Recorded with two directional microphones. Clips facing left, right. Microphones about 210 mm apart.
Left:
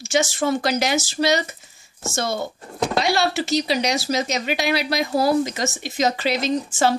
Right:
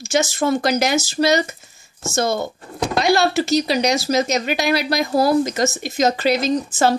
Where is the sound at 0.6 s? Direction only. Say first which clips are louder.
Right 3 dB; 45° right (ahead or behind).